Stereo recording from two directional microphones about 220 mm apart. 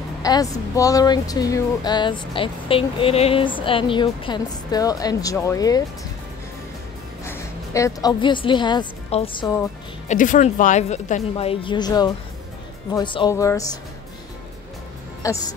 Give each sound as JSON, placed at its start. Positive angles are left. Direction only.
{"t": 0.2, "sound": "speech", "side_deg": 15}
{"t": 7.2, "sound": "a woman's voice", "side_deg": 15}
{"t": 10.0, "sound": "a woman's voice", "side_deg": 35}
{"t": 15.2, "sound": "speech", "side_deg": 15}